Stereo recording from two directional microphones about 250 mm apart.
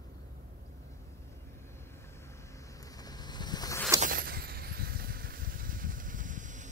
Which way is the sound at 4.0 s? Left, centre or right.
Right.